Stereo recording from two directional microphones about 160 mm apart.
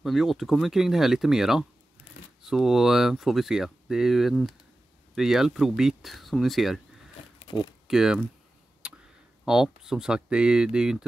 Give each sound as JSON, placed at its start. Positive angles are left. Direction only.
{"t": 0.0, "sound": "speech", "side_deg": 0}
{"t": 7.3, "sound": "a sound", "side_deg": 35}
{"t": 7.9, "sound": "speech", "side_deg": -5}